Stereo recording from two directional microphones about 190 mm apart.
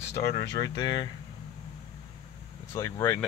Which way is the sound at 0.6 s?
25° left (ahead or behind).